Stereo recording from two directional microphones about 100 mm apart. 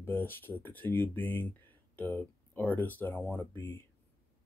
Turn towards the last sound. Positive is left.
turn(degrees=25)  # may be behind; listen again after turning